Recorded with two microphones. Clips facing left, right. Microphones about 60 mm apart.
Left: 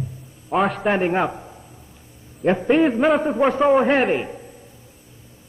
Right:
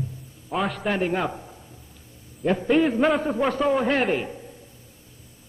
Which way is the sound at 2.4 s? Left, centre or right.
Left.